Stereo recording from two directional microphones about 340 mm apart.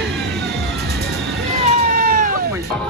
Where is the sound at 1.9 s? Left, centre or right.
Right.